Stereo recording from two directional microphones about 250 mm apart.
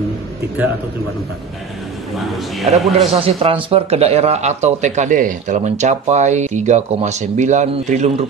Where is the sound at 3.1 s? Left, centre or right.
Right.